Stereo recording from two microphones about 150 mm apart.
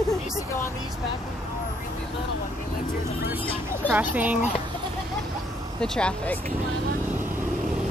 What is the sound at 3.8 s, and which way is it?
Speech, 10° right (ahead or behind).